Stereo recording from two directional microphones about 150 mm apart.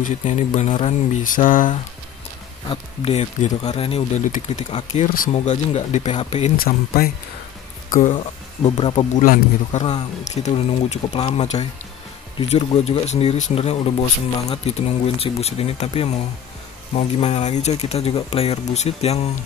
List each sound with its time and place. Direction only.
0.0 s speech: 55° left (ahead or behind)
2.7 s speech: 40° left (ahead or behind)
4.2 s speech: 55° left (ahead or behind)
5.0 s speech: 70° left (ahead or behind)
5.3 s speech: 45° left (ahead or behind)
6.6 s speech: 85° left
8.6 s speech: 40° left (ahead or behind)
9.1 s speech: 60° left (ahead or behind)
11.1 s speech: 35° left (ahead or behind)
12.4 s speech: 45° left (ahead or behind)